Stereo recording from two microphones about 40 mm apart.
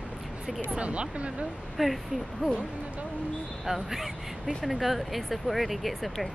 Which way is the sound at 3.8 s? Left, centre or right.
Centre.